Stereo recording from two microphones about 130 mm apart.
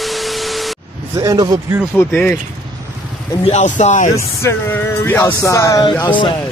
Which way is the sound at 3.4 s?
60° left (ahead or behind).